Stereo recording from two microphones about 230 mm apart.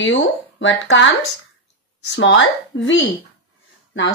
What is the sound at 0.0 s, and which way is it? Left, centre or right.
Speech, left.